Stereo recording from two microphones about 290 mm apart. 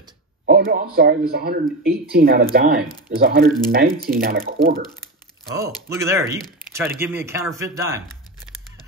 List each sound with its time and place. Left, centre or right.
0.5 s speech: right
5.9 s speech: centre